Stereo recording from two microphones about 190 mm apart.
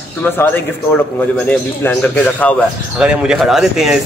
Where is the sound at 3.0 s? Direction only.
5° right (ahead or behind).